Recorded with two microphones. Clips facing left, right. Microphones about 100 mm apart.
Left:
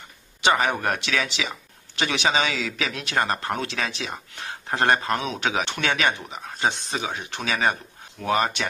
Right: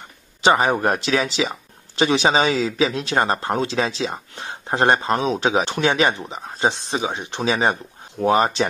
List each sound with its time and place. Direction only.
0.4 s speech: 30° right (ahead or behind)